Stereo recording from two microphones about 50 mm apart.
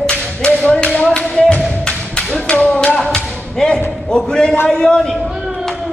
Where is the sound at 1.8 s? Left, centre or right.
Centre.